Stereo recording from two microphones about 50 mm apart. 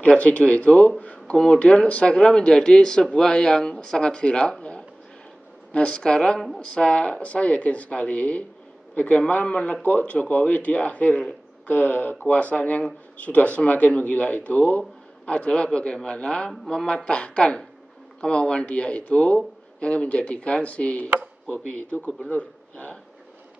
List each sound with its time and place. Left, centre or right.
0.0 s a man's voice: left
1.3 s a man's voice: centre
22.3 s a man's voice: left